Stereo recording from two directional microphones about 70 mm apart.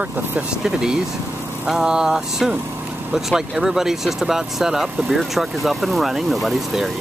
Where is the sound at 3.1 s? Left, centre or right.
Centre.